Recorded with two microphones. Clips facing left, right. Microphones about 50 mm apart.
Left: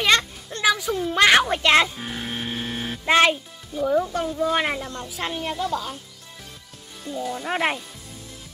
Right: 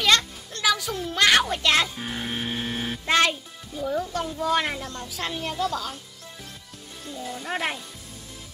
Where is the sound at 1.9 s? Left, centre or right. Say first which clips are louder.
Even; centre.